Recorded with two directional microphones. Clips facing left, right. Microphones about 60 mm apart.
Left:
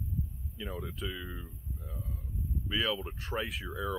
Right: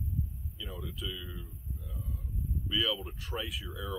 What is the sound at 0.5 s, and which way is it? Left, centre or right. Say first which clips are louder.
Speech: left 4 dB; left.